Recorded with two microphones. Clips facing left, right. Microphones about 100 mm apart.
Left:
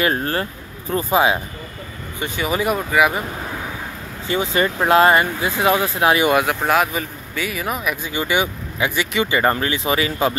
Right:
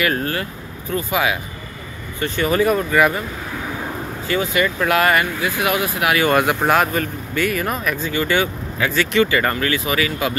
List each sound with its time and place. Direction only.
0.0 s speech: 30° left (ahead or behind)
2.1 s speech: 10° left (ahead or behind)
4.3 s speech: 25° left (ahead or behind)
6.3 s speech: centre (ahead or behind); by 10.3 s 30° left (ahead or behind)